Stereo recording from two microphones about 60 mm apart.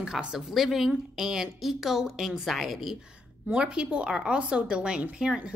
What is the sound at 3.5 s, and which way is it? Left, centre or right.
A woman's voice, centre.